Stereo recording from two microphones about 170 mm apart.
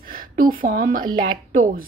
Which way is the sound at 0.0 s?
55° right (ahead or behind).